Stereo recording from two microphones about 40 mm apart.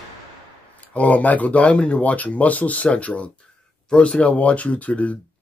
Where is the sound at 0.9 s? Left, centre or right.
Left.